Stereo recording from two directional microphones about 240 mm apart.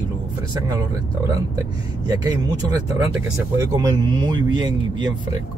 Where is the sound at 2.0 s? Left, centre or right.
Centre.